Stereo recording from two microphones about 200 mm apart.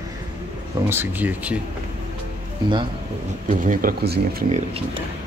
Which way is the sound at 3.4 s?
40° right (ahead or behind).